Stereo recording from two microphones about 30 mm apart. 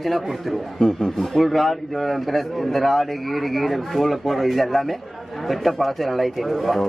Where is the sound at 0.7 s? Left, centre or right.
Centre.